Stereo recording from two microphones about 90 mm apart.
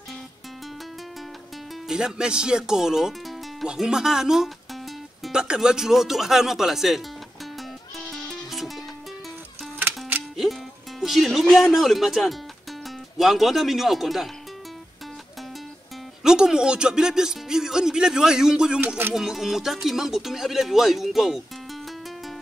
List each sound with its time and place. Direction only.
1.9 s speech: 5° right (ahead or behind)
8.1 s music: centre (ahead or behind)
9.8 s music: 20° right (ahead or behind)
11.0 s speech: centre (ahead or behind)
16.2 s speech: 5° right (ahead or behind)